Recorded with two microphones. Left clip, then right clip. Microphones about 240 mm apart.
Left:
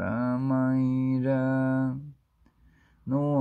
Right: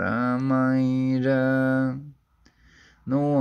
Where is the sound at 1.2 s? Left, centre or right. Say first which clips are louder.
Right 6 dB; left.